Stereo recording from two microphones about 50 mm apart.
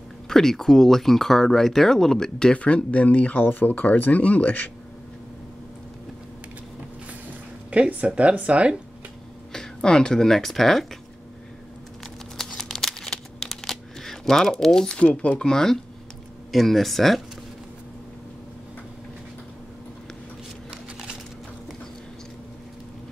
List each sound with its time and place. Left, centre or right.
0.3 s speech: centre; by 4.6 s left
7.7 s speech: right
9.5 s speech: centre
12.4 s a sound: centre
15.0 s speech: left
16.5 s speech: centre